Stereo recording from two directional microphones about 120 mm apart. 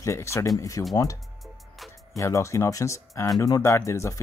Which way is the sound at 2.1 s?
25° left (ahead or behind).